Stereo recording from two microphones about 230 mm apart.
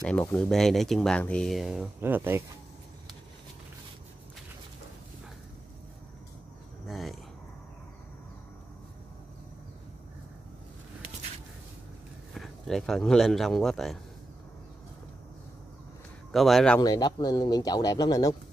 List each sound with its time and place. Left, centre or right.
0.0 s speech: centre
6.9 s a sound: centre
12.4 s speech: centre
16.3 s speech: centre
16.8 s speech: centre